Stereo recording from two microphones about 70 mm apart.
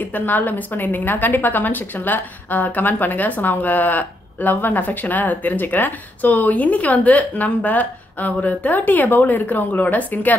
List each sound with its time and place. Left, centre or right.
0.0 s a woman's voice: left